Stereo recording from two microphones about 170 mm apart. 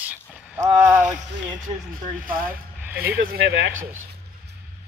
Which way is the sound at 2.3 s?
55° right (ahead or behind).